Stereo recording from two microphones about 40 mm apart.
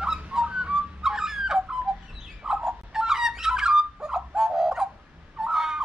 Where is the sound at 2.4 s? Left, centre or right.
Centre.